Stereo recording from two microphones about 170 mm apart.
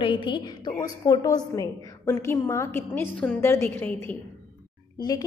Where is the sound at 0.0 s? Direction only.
30° left (ahead or behind); by 4.2 s 10° left (ahead or behind).